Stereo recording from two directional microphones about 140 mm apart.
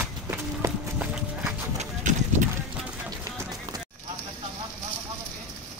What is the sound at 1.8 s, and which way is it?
Clip-clop, 60° right (ahead or behind).